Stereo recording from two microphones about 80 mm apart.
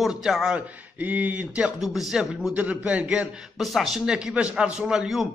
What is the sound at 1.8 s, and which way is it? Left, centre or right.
Speech, centre.